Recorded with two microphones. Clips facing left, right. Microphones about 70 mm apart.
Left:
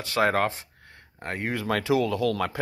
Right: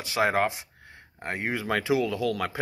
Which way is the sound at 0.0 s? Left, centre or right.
Centre.